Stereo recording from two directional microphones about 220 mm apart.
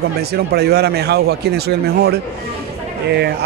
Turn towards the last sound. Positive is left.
turn(degrees=-45)  # may be behind; listen again after turning